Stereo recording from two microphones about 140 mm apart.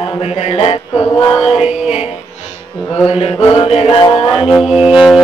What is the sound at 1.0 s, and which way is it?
Mantra, 35° left (ahead or behind).